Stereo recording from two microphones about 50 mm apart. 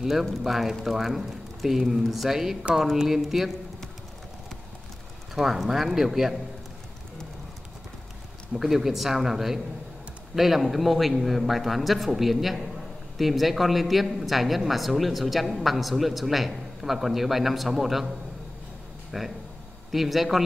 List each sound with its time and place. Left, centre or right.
0.2 s speech: centre
5.3 s speech: centre
8.5 s speech: centre
19.1 s speech: centre